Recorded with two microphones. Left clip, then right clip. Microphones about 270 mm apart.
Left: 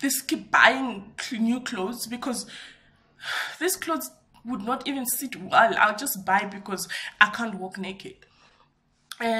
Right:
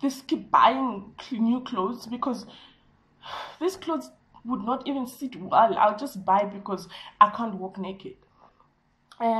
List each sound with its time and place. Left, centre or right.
0.0 s a woman's voice: left
9.1 s speech: left